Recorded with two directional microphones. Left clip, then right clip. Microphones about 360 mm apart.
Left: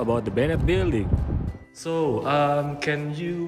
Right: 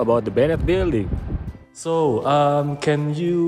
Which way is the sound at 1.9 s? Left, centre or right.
Centre.